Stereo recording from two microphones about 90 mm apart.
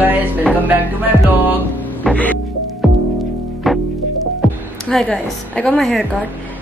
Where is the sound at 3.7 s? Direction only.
Centre (ahead or behind).